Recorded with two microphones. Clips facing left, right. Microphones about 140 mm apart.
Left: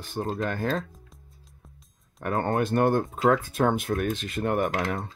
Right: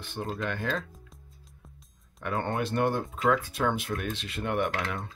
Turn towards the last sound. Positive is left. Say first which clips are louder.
# left 4 dB
turn(degrees=40)  # may be behind; listen again after turning